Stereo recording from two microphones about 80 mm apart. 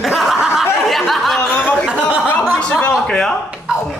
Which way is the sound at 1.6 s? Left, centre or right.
Centre.